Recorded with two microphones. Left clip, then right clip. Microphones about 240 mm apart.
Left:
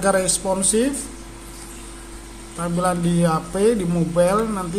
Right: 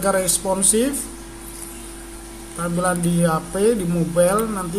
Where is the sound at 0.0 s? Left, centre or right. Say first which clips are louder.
Left 1 dB; centre.